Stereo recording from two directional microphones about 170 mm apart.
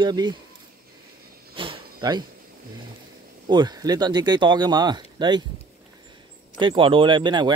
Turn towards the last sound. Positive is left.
turn(degrees=-25)  # may be behind; listen again after turning